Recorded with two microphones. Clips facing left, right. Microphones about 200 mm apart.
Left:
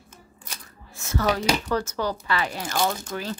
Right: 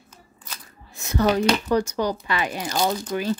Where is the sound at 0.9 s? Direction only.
15° right (ahead or behind).